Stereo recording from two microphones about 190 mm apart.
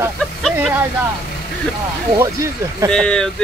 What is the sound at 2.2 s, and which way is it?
Speech, 15° right (ahead or behind).